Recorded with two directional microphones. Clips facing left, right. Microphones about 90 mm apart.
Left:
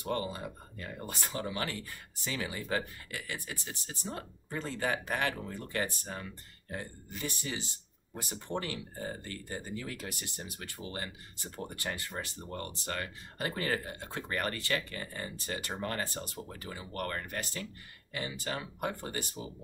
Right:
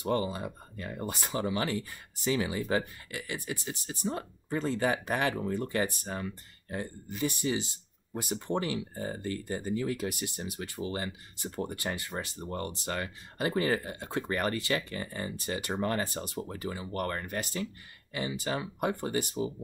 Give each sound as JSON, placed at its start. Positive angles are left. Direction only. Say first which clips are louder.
{"t": 0.0, "sound": "speech", "louder": "right 4 dB", "side_deg": -15}